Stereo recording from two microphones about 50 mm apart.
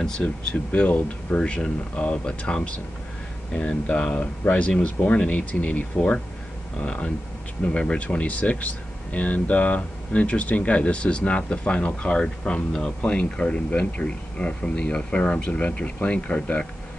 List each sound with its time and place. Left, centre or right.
0.2 s speech: left
5.9 s speech: left